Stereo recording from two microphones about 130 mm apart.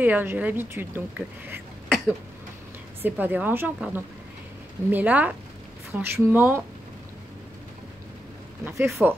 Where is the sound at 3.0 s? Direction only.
15° right (ahead or behind).